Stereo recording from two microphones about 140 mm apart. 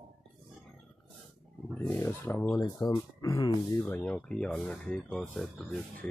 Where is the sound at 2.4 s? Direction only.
35° left (ahead or behind).